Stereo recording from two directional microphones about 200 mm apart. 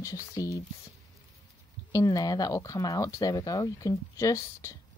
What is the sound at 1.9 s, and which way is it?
Speech, 15° left (ahead or behind).